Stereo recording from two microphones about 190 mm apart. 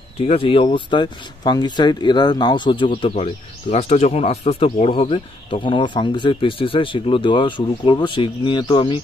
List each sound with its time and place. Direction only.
0.3 s speech: 30° left (ahead or behind)